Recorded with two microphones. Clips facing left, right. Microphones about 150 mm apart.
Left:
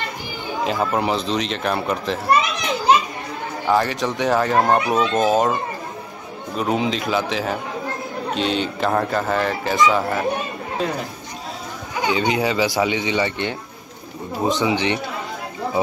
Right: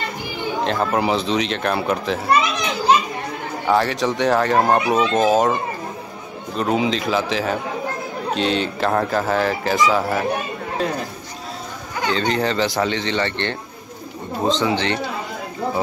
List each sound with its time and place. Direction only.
0.7 s a child's voice: centre (ahead or behind)
12.1 s speech: 5° left (ahead or behind)
14.6 s speech: 15° left (ahead or behind)